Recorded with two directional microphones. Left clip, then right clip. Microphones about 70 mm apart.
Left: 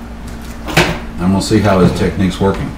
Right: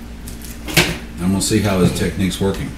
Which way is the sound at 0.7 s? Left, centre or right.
Centre.